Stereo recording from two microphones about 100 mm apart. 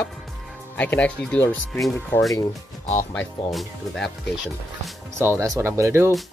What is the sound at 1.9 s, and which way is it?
Speech, 20° left (ahead or behind).